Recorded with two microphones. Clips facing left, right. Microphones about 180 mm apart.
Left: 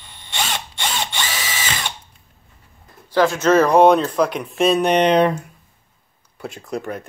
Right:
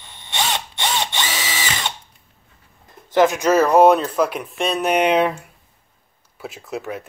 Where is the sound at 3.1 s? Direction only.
20° right (ahead or behind).